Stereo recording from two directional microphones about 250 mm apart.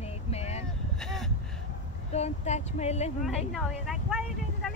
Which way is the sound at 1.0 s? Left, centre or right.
Centre.